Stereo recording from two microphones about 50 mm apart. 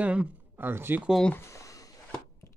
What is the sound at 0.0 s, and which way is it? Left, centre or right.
Speech, right.